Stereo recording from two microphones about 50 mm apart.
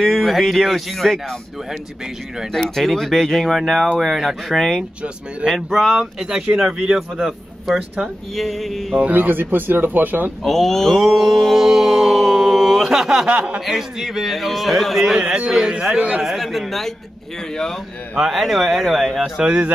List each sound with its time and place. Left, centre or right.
0.0 s a man's voice: centre
2.5 s a man's voice: centre
6.2 s a man's voice: centre
9.1 s speech: right
10.4 s speech: centre
11.0 s mantra: centre
13.3 s speech: right
13.7 s a man's voice: centre
15.1 s speech: centre
16.2 s a man's voice: centre
18.1 s a man's voice: centre
19.4 s speech: right